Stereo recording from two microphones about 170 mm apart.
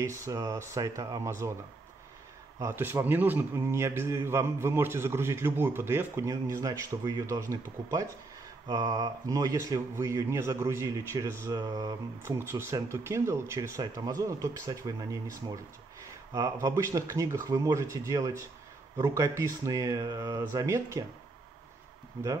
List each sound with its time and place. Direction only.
0.0 s a man's voice: 15° right (ahead or behind)
2.6 s a man's voice: 15° right (ahead or behind)
16.3 s a man's voice: 20° right (ahead or behind)